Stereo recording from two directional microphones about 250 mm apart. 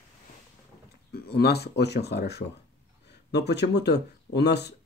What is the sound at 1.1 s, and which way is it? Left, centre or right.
Speech, left.